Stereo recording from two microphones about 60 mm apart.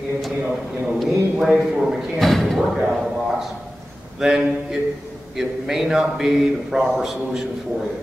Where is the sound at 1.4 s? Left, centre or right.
Centre.